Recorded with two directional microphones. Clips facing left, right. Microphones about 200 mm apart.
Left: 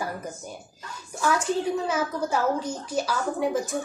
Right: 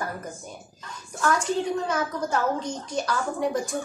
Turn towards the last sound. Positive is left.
turn(degrees=5)  # may be behind; listen again after turning